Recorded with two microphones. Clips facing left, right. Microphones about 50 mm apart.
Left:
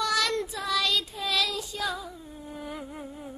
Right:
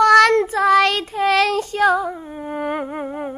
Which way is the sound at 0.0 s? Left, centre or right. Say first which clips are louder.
Right 15 dB; right.